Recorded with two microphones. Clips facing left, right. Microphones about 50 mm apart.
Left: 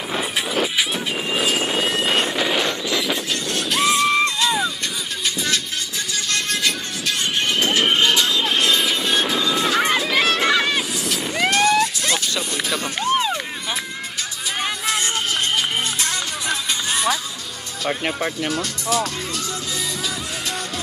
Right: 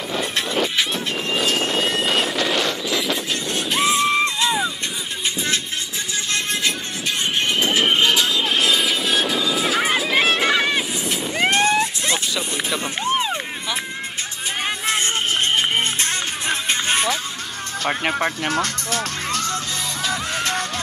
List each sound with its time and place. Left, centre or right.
0.1 s vehicle: centre
3.4 s music: centre
6.3 s music: right
7.8 s vehicle: centre
10.5 s neigh: centre
11.3 s vehicle: right
12.4 s music: centre
15.5 s music: right
17.8 s speech: right
18.5 s speech: right